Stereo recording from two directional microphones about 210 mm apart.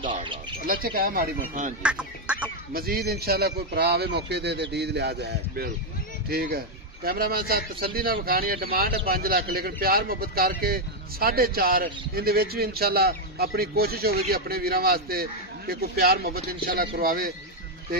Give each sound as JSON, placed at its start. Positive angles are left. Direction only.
{"t": 0.7, "sound": "a man's voice", "side_deg": -45}
{"t": 1.8, "sound": "fowl", "side_deg": -5}
{"t": 2.7, "sound": "a man's voice", "side_deg": -45}